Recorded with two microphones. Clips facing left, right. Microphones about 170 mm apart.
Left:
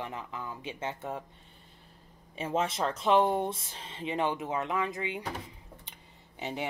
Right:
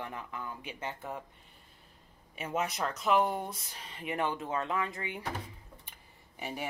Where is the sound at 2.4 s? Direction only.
30° left (ahead or behind).